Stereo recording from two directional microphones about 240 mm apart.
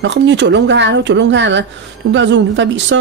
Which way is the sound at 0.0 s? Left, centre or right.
Right.